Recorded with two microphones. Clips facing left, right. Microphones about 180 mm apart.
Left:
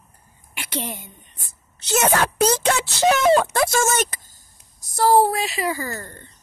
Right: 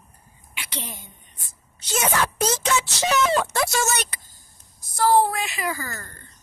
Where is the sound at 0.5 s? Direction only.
50° left (ahead or behind).